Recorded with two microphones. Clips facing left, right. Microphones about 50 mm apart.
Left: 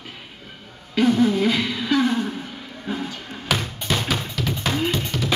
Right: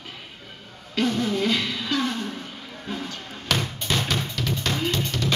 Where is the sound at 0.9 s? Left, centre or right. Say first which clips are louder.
Left 6 dB; centre.